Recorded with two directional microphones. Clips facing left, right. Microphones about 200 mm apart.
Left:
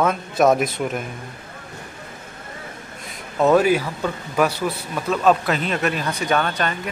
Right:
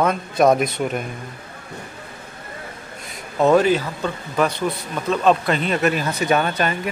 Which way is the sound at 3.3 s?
5° left (ahead or behind).